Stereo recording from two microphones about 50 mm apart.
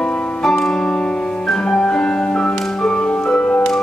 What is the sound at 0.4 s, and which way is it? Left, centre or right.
Music, centre.